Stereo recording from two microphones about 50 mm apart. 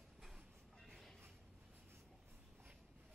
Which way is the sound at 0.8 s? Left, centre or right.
Centre.